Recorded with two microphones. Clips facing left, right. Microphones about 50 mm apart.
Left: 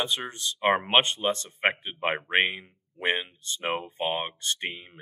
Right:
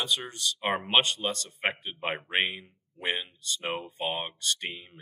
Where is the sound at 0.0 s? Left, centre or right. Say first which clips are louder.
Left 1 dB; left.